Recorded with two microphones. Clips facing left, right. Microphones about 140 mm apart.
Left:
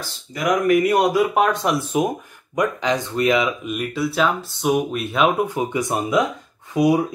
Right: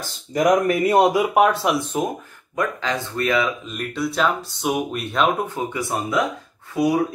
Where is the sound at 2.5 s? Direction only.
15° left (ahead or behind).